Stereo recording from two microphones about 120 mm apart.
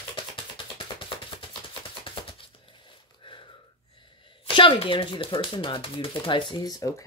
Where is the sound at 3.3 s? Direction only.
45° left (ahead or behind).